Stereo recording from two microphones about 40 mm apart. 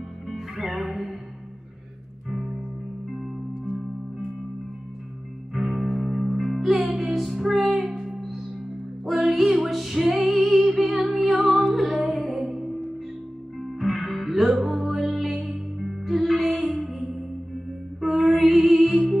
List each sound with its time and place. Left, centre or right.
0.3 s music: centre
2.2 s music: centre
5.5 s music: centre
7.9 s music: centre
9.0 s music: centre